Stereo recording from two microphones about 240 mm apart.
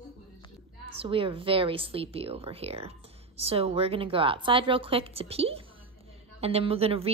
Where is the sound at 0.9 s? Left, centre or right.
Right.